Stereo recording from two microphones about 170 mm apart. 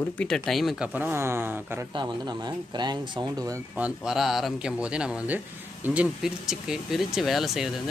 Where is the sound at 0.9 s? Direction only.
15° right (ahead or behind).